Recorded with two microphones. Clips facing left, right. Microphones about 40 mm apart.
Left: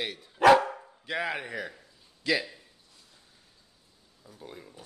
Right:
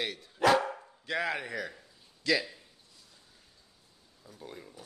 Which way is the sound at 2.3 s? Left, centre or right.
Centre.